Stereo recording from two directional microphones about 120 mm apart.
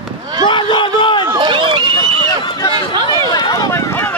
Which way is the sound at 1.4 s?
45° right (ahead or behind).